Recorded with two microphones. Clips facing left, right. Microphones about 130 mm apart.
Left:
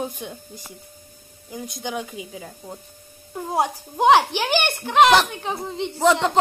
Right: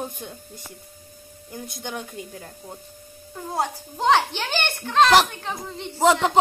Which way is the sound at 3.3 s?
20° left (ahead or behind).